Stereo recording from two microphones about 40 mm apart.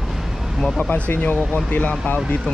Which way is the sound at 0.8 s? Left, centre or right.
Left.